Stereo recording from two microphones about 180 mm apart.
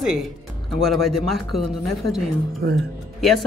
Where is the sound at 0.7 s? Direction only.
Centre (ahead or behind).